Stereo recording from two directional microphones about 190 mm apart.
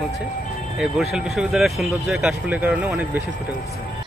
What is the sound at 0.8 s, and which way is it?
Speech, centre (ahead or behind).